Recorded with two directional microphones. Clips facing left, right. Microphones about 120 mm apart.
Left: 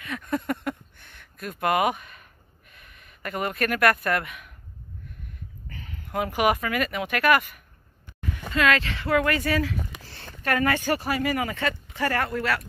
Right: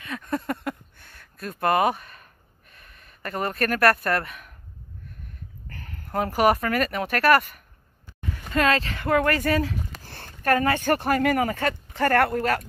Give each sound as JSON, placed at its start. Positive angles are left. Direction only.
{"t": 0.0, "sound": "a sound", "side_deg": -30}
{"t": 3.0, "sound": "speech", "side_deg": -40}
{"t": 6.0, "sound": "speech", "side_deg": -40}
{"t": 10.1, "sound": "a sound", "side_deg": -55}
{"t": 10.5, "sound": "speech", "side_deg": -30}
{"t": 10.8, "sound": "speech", "side_deg": -55}